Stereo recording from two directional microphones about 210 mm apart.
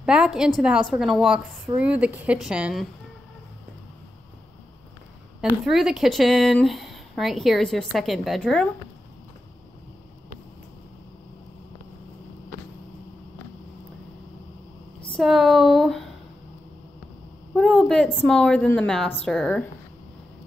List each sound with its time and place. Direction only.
0.0 s speech: 5° right (ahead or behind)
5.4 s speech: centre (ahead or behind)
15.1 s speech: centre (ahead or behind)
17.6 s speech: centre (ahead or behind)